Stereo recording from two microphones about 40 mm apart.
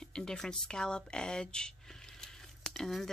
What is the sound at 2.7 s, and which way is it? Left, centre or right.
Speech, centre.